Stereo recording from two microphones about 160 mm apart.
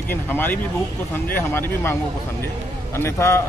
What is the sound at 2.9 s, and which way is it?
Speech, 15° left (ahead or behind).